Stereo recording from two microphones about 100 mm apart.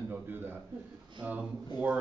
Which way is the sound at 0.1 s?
20° right (ahead or behind).